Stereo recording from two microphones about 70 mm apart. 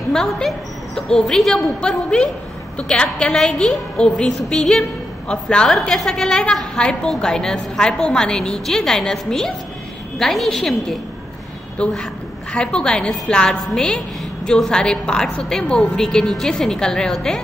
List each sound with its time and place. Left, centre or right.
0.1 s a woman's voice: centre
11.8 s a woman's voice: centre